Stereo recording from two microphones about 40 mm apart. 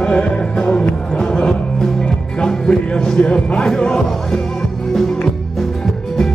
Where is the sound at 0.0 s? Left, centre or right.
Left.